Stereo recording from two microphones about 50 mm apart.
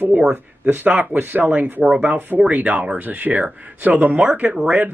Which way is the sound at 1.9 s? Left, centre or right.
Right.